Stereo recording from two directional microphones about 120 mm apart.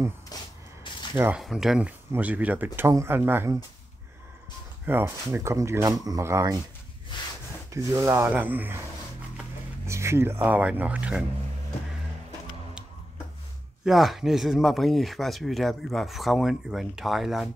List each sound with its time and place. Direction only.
0.3 s a sound: 30° left (ahead or behind)
1.3 s speech: centre (ahead or behind); by 3.5 s 20° right (ahead or behind)
4.8 s speech: 20° right (ahead or behind)
7.7 s speech: 25° right (ahead or behind)
9.8 s speech: 25° right (ahead or behind)
13.8 s speech: centre (ahead or behind)